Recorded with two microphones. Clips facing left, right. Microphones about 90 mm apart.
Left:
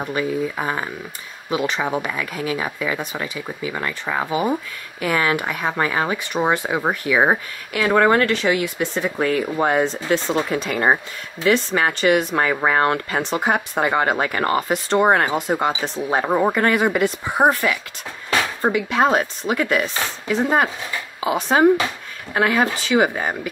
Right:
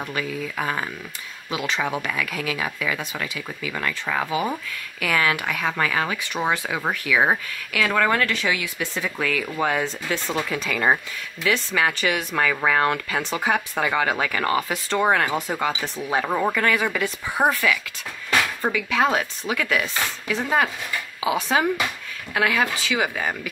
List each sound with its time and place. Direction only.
0.0 s speech: 25° left (ahead or behind)
16.3 s speech: 20° left (ahead or behind)
16.5 s speech: 35° left (ahead or behind)